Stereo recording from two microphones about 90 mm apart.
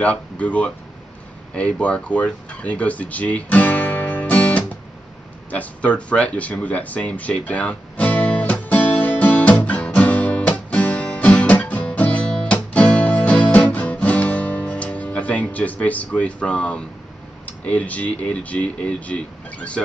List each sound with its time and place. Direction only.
0.0 s speech: 15° left (ahead or behind)
5.5 s a sound: 15° left (ahead or behind)
10.5 s music: 15° left (ahead or behind)
17.5 s speech: 15° left (ahead or behind)